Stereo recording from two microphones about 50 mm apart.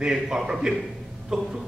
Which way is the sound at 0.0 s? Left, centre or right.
Centre.